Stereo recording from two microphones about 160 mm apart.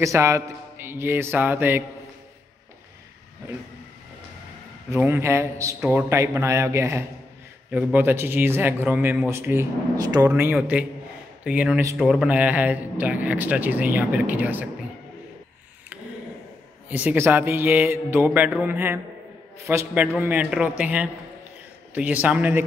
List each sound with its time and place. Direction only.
0.0 s speech: 20° right (ahead or behind)
4.9 s speech: 15° right (ahead or behind)
16.9 s speech: 10° right (ahead or behind)